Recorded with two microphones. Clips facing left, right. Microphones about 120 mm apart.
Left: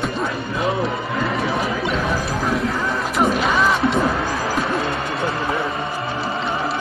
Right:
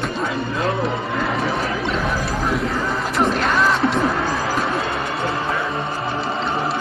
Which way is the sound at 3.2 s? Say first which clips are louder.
Left 1 dB; 5° left (ahead or behind).